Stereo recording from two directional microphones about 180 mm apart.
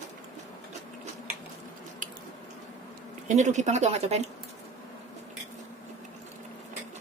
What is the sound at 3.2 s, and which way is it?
Speech, 40° right (ahead or behind).